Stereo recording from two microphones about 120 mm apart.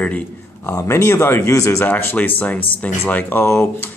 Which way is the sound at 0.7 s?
25° left (ahead or behind).